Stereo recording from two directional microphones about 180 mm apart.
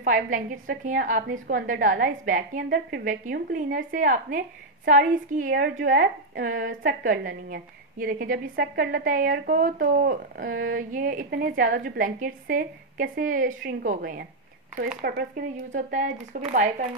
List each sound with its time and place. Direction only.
0.0 s a woman's voice: 50° right (ahead or behind)